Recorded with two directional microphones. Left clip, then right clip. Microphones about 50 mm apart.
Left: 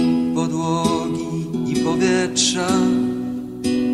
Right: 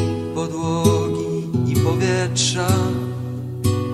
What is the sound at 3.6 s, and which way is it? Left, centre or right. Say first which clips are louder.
Music: left 3 dB; left.